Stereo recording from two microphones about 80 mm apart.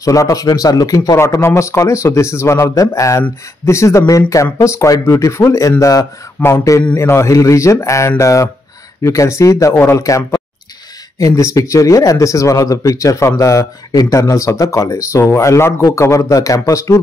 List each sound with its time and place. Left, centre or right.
0.0 s speech: left
1.4 s speech: left